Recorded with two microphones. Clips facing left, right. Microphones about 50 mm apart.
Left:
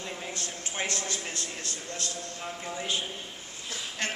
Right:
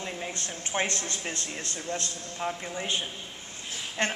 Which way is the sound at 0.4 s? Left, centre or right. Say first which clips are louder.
Right 6 dB; right.